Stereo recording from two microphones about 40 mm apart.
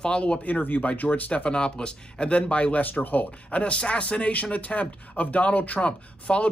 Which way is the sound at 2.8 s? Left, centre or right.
Left.